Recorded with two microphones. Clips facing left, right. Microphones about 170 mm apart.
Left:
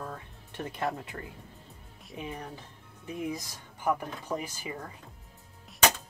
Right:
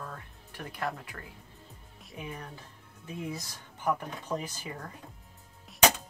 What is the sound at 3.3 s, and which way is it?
Speech, 15° left (ahead or behind).